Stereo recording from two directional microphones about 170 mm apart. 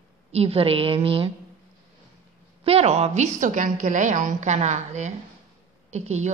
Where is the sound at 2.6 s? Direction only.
35° right (ahead or behind).